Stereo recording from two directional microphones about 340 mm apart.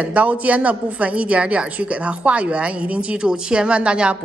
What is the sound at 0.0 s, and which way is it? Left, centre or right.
A woman's voice, centre.